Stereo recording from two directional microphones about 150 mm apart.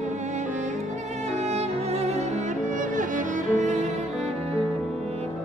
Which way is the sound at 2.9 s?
55° right (ahead or behind).